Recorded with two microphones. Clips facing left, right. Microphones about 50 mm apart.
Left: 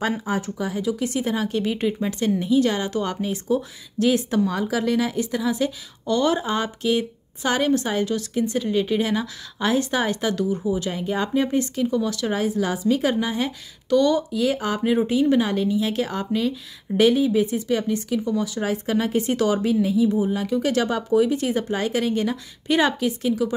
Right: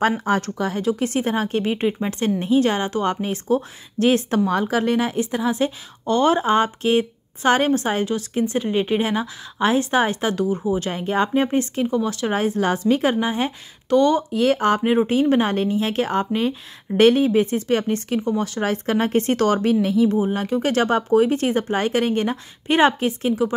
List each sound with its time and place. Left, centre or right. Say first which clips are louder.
0.2 s speech: right 4 dB; right
0.9 s a woman's voice: right 2 dB; right
14.8 s a woman's voice: right 2 dB; right
17.0 s speech: right 3 dB; right